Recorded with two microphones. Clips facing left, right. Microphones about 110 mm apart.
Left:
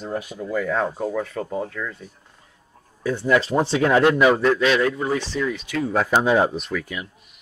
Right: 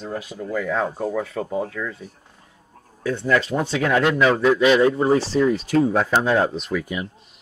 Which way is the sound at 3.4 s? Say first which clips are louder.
Left 3 dB; 30° left (ahead or behind).